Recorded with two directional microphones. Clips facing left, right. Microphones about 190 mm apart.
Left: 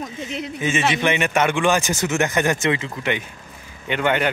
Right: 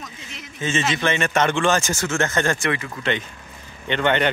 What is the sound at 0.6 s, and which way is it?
Speech, 15° left (ahead or behind).